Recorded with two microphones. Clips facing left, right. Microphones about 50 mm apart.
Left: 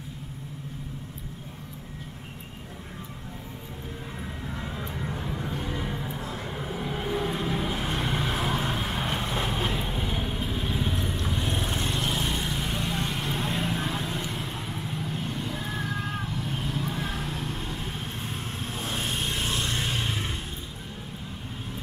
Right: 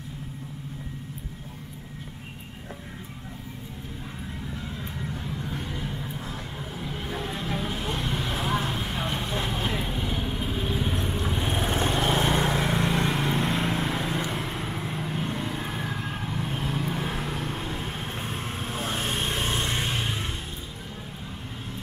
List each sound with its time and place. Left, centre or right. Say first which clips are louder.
4.6 s vehicle: left 1 dB; centre
11.0 s vehicle: right 2 dB; right
11.8 s vehicle: right 5 dB; right; by 16.3 s centre
16.3 s vehicle: right 2 dB; right
19.8 s a sound: right 1 dB; centre